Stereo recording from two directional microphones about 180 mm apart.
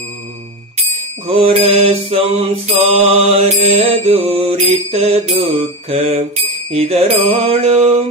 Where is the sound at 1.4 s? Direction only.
35° right (ahead or behind).